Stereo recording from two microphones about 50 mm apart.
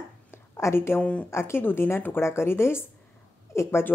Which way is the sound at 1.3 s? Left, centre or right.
Left.